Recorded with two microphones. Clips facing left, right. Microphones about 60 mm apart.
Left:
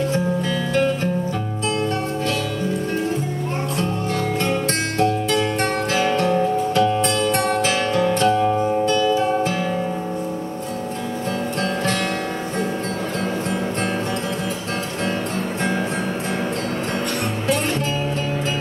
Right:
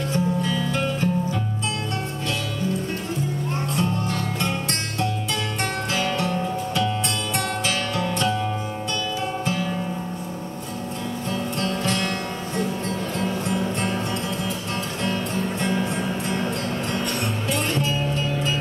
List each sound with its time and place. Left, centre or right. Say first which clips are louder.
6.1 s music: left 6 dB; left
7.3 s music: left 6 dB; left
8.4 s music: left 9 dB; centre
9.1 s music: left 7 dB; left
11.6 s music: left 3 dB; left